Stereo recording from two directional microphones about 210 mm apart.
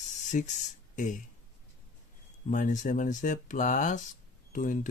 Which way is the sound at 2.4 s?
35° left (ahead or behind).